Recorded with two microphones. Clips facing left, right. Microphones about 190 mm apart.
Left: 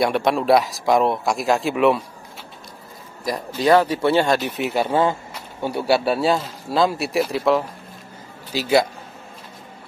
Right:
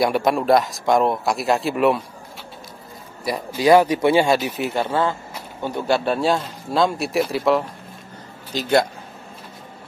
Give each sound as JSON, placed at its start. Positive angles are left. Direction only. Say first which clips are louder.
{"t": 0.0, "sound": "a man's voice", "louder": "even", "side_deg": 0}
{"t": 3.3, "sound": "speech", "louder": "right 2 dB", "side_deg": -10}
{"t": 4.7, "sound": "a man's voice", "louder": "left 3 dB", "side_deg": 15}